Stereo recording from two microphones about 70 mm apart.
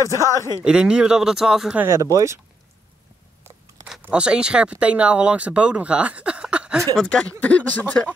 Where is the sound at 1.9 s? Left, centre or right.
Right.